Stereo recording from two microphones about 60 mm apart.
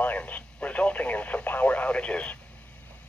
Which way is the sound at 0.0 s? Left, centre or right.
Left.